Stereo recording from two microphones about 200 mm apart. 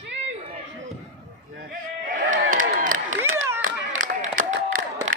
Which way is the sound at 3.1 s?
90° right.